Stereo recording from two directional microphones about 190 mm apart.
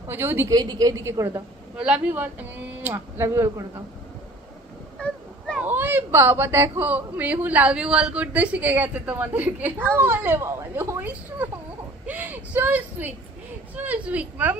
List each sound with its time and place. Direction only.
0.1 s a woman's voice: 10° right (ahead or behind)
1.8 s a woman's voice: 5° right (ahead or behind)
4.9 s a sound: 5° left (ahead or behind)
5.6 s a woman's voice: 10° right (ahead or behind)